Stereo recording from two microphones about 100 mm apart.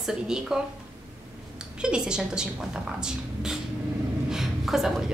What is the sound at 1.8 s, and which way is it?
A woman's voice, 10° right (ahead or behind).